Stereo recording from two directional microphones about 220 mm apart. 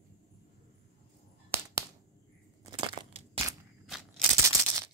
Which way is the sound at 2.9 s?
25° right (ahead or behind).